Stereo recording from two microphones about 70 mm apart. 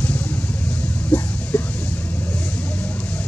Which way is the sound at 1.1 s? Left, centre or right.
Left.